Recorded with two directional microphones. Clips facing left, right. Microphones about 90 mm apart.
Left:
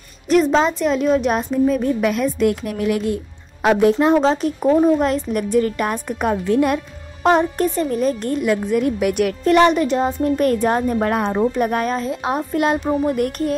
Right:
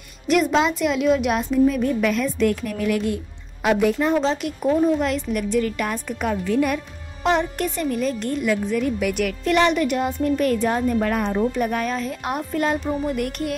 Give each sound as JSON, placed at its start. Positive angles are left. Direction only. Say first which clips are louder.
{"t": 0.3, "sound": "speech", "louder": "left 3 dB", "side_deg": 35}
{"t": 4.0, "sound": "speech", "louder": "left 5 dB", "side_deg": 50}
{"t": 6.4, "sound": "speech", "louder": "left 4 dB", "side_deg": 30}
{"t": 7.2, "sound": "speech", "louder": "left 5 dB", "side_deg": 40}
{"t": 13.0, "sound": "speech", "louder": "left 5 dB", "side_deg": 40}